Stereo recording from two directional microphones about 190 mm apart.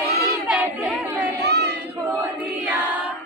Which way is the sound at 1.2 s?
60° right (ahead or behind).